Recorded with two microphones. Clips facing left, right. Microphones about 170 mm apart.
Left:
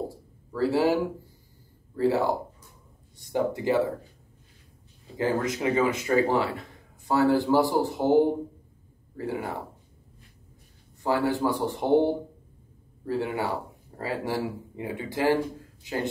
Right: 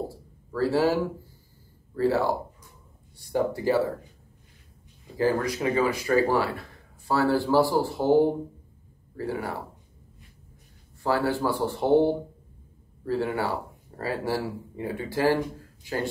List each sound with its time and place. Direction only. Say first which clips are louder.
0.1 s a sound: right 2 dB; 15° left (ahead or behind)
2.0 s speech: even; 15° left (ahead or behind)
5.1 s speech: right 2 dB; 20° left (ahead or behind)
11.0 s speech: even; 15° left (ahead or behind)